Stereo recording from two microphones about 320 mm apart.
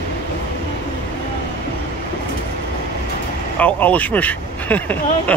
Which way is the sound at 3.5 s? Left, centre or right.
Centre.